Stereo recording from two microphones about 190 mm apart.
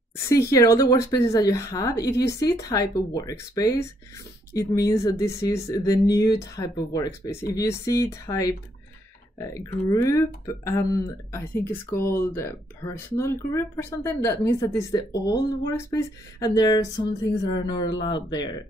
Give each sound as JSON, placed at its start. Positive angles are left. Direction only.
{"t": 0.3, "sound": "speech", "side_deg": 15}